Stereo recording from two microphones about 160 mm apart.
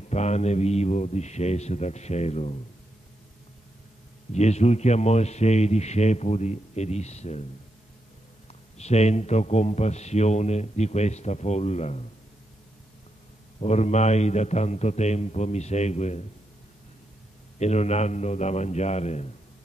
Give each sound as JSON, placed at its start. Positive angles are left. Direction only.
{"t": 0.1, "sound": "a man's voice", "side_deg": 45}
{"t": 4.3, "sound": "a man's voice", "side_deg": 45}
{"t": 8.7, "sound": "a man's voice", "side_deg": 45}
{"t": 13.6, "sound": "a man's voice", "side_deg": 45}
{"t": 17.6, "sound": "a man's voice", "side_deg": 45}